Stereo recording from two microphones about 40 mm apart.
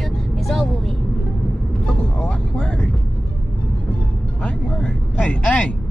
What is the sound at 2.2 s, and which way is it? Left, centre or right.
Vehicle, centre.